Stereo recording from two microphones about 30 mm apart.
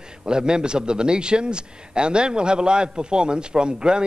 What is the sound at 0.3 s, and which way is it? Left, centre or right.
A man's voice, right.